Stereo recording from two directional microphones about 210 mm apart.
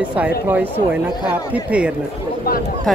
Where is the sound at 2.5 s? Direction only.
45° left (ahead or behind).